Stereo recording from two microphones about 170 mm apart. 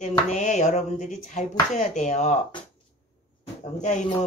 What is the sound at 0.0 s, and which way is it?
Speech, 45° left (ahead or behind).